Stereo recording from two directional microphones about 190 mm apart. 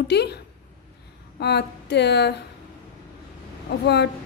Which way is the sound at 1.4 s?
60° left (ahead or behind).